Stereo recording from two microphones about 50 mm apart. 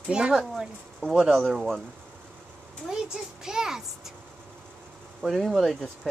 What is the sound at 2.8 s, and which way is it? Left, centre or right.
A child's voice, centre.